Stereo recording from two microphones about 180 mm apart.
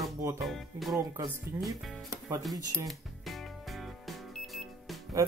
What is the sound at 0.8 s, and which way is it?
Speech, centre (ahead or behind).